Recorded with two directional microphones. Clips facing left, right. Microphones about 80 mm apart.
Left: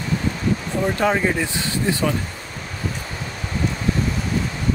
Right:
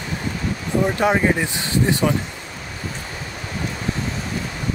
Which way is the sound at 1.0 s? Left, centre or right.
Centre.